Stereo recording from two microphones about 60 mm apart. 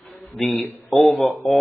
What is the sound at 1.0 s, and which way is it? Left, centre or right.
Speech, centre.